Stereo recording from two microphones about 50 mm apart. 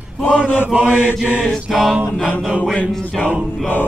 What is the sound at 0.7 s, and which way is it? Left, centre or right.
Mantra, centre.